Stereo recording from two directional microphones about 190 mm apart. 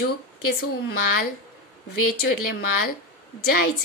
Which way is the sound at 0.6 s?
55° left (ahead or behind).